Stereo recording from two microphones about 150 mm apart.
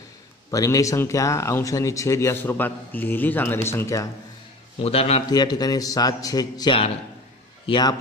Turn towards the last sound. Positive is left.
turn(degrees=35)  # may be behind; listen again after turning